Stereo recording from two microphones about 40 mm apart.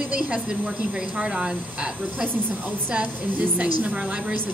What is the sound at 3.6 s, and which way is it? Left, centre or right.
Speech, right.